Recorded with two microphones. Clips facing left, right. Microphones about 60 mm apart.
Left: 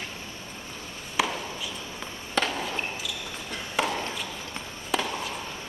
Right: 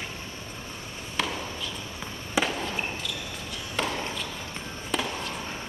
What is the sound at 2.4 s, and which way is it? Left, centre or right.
Fireworks, centre.